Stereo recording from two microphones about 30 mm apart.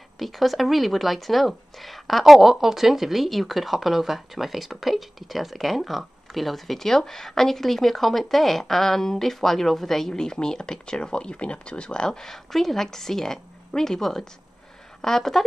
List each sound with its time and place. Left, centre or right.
0.2 s speech: centre
10.1 s speech: left
11.3 s speech: left
12.1 s a woman's voice: centre